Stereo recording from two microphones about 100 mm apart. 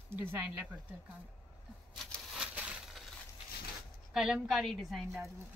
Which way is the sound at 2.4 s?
10° right (ahead or behind).